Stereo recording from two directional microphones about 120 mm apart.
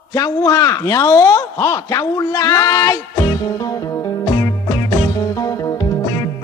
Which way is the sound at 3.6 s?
30° left (ahead or behind).